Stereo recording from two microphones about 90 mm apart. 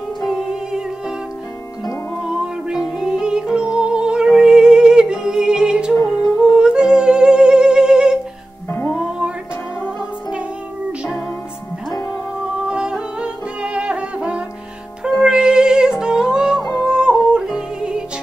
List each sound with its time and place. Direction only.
0.3 s music: 5° right (ahead or behind)
2.2 s music: 10° right (ahead or behind)
5.9 s music: 40° left (ahead or behind)
6.4 s humming: 10° right (ahead or behind)
8.6 s music: 25° left (ahead or behind)
11.9 s music: 40° left (ahead or behind)
12.6 s music: 10° right (ahead or behind)
16.8 s yodeling: 10° right (ahead or behind)
17.4 s music: 5° right (ahead or behind)